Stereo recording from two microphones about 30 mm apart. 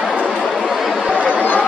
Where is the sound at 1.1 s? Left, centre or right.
Right.